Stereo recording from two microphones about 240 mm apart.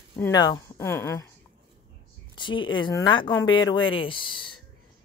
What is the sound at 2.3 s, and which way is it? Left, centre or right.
Speech, centre.